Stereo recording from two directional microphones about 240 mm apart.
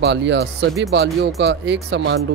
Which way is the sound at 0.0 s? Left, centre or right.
Right.